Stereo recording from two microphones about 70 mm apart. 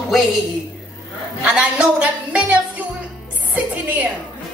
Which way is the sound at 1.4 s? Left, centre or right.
Centre.